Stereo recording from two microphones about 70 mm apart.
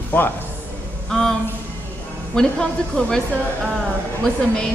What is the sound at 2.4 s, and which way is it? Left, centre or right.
Speech, centre.